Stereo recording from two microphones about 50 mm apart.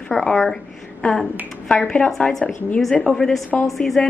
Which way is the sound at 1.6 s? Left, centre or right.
Centre.